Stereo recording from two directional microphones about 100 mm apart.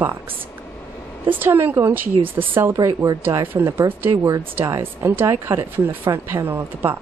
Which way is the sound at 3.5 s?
20° right (ahead or behind).